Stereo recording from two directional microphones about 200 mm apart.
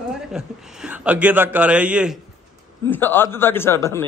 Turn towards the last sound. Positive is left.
turn(degrees=15)  # may be behind; listen again after turning